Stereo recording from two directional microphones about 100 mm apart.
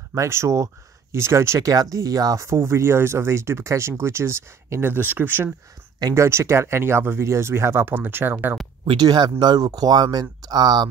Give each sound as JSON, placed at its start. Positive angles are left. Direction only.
{"t": 0.1, "sound": "speech", "side_deg": -30}
{"t": 5.9, "sound": "speech", "side_deg": -35}
{"t": 8.8, "sound": "speech", "side_deg": -50}